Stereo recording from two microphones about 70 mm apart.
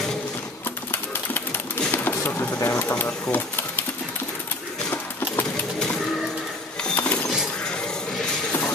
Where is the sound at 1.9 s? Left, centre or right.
Left.